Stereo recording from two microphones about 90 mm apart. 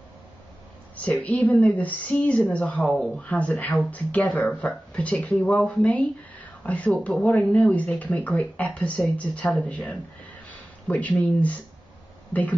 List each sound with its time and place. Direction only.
0.9 s speech: 15° left (ahead or behind)
2.8 s speech: 5° left (ahead or behind)
3.2 s speech: 15° left (ahead or behind)